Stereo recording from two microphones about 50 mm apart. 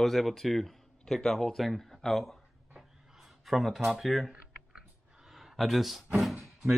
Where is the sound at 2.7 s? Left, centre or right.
Centre.